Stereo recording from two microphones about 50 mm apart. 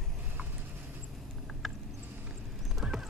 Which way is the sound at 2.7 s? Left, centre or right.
Centre.